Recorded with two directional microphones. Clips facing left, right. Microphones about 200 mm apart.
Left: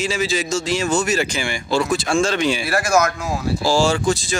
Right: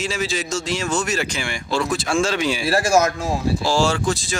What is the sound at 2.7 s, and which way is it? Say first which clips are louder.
Speech: right 4 dB; 30° right (ahead or behind).